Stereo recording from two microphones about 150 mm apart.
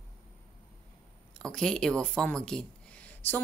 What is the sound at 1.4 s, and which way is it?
Speech, 5° left (ahead or behind).